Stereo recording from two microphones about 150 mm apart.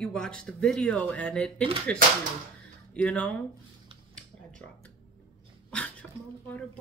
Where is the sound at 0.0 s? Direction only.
5° left (ahead or behind).